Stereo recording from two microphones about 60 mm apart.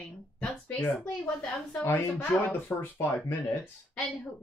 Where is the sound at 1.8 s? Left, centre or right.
Left.